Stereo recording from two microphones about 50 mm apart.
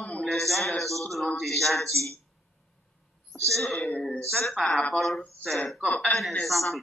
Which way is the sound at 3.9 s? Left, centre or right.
Left.